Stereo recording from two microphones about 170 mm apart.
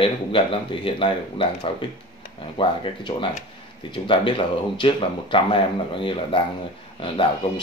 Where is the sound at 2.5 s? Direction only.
30° left (ahead or behind).